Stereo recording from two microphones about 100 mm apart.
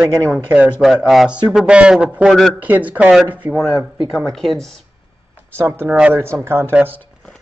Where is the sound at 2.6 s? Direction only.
15° right (ahead or behind).